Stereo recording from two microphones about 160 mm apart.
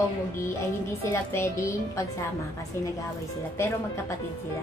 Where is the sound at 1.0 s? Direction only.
15° left (ahead or behind).